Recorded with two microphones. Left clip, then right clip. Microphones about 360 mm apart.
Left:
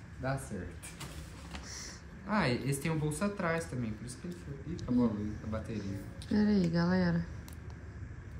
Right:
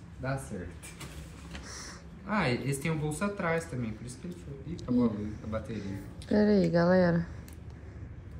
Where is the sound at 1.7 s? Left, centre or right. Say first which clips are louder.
Right 2 dB; centre.